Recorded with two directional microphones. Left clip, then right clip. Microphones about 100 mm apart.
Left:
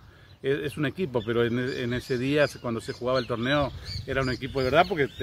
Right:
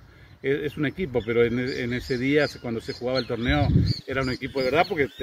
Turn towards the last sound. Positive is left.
turn(degrees=40)  # may be behind; listen again after turning